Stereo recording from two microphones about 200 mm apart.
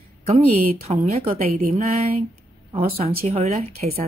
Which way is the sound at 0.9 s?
30° right (ahead or behind).